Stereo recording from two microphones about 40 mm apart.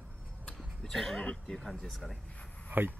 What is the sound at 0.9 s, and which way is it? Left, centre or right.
Speech, centre.